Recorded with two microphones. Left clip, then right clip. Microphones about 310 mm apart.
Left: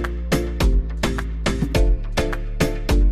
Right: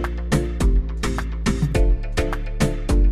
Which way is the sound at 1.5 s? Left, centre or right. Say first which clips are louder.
Even; centre.